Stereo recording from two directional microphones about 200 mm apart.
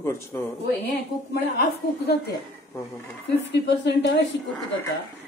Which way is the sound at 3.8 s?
60° left (ahead or behind).